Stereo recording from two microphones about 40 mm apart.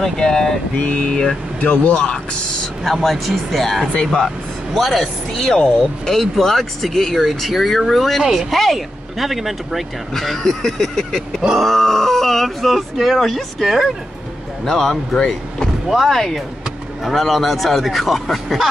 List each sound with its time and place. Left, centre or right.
0.2 s speech: centre
0.7 s a sound: left
1.6 s speech: left
2.8 s speech: centre
10.1 s speech: centre
13.7 s speech: centre
14.6 s speech: centre